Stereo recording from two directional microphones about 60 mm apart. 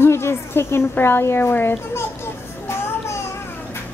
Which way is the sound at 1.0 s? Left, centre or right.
Left.